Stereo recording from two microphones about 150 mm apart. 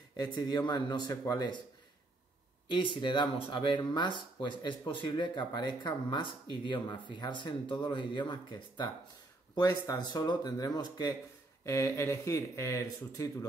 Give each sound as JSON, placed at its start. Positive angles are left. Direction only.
{"t": 0.2, "sound": "speech", "side_deg": 25}
{"t": 2.7, "sound": "speech", "side_deg": 35}